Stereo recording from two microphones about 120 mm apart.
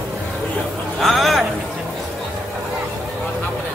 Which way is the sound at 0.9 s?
Centre (ahead or behind).